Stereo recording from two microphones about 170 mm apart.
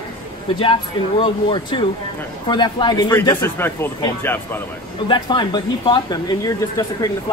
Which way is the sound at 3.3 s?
15° left (ahead or behind).